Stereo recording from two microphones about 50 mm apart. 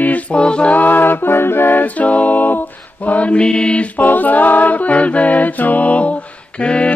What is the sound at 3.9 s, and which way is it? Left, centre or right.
A capella, left.